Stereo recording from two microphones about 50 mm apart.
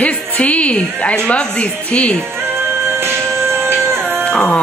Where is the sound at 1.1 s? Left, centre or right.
Centre.